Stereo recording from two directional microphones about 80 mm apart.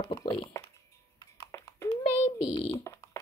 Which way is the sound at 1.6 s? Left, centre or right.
Left.